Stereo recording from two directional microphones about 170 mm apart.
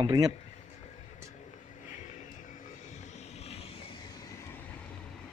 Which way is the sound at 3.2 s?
40° left (ahead or behind).